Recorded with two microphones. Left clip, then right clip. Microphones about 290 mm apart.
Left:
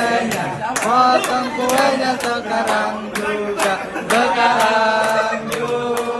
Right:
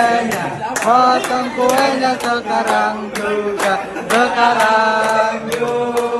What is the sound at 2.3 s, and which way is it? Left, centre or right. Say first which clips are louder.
Mantra: right 3 dB; left.